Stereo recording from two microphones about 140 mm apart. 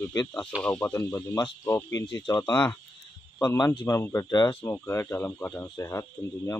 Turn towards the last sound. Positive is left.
turn(degrees=20)  # may be behind; listen again after turning